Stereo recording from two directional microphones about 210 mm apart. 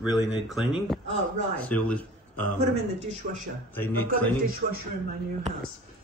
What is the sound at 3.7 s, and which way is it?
Speech, 10° left (ahead or behind).